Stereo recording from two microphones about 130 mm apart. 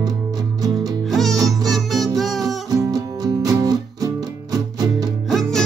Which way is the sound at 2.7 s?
30° right (ahead or behind).